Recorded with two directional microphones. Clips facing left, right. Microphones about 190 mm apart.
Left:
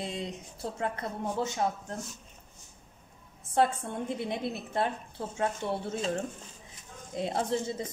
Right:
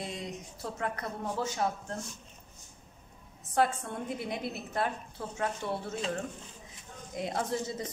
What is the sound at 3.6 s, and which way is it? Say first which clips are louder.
A woman's voice: left 2 dB; 25° left (ahead or behind).